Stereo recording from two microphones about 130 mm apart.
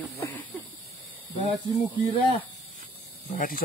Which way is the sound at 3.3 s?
90° left.